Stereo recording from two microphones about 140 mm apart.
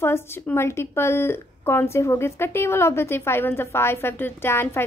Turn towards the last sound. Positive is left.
turn(degrees=15)  # may be behind; listen again after turning